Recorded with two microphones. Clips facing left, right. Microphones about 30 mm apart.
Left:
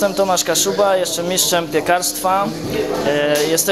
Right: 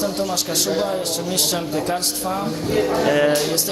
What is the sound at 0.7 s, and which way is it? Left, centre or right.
Speech, left.